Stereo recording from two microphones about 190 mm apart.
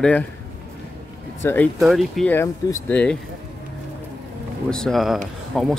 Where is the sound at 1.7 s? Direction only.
Centre (ahead or behind).